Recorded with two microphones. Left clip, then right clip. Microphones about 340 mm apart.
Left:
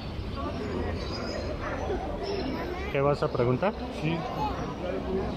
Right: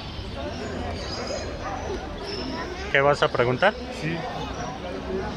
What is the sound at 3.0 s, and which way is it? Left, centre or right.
Speech, right.